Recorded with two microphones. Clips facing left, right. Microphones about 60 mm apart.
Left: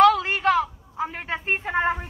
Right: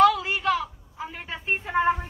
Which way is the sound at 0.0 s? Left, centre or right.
Left.